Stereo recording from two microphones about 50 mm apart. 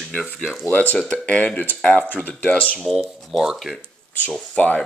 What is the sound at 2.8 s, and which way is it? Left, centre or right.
Speech, centre.